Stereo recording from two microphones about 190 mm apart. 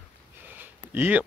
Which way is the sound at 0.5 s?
10° right (ahead or behind).